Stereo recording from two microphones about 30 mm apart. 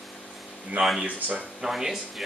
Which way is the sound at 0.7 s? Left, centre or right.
Right.